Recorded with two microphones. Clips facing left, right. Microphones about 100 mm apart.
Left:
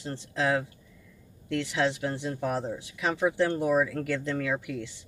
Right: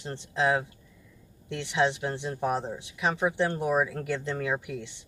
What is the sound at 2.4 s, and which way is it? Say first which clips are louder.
Speech: right 2 dB; 30° right (ahead or behind).